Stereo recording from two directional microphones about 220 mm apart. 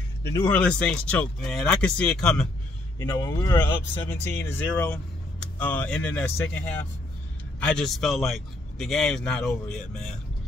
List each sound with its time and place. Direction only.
0.3 s speech: 10° left (ahead or behind)
3.0 s speech: 15° left (ahead or behind)
7.6 s speech: 5° left (ahead or behind)